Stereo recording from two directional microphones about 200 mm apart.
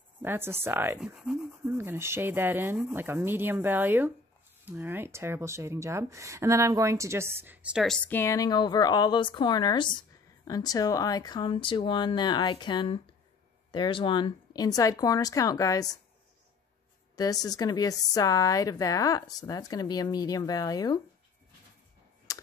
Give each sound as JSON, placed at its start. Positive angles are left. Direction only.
{"t": 0.2, "sound": "speech", "side_deg": -10}
{"t": 17.1, "sound": "speech", "side_deg": 20}
{"t": 22.3, "sound": "computer keyboard", "side_deg": 15}